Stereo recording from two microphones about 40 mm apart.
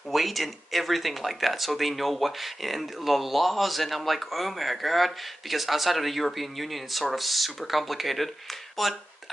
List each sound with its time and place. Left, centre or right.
0.1 s speech: centre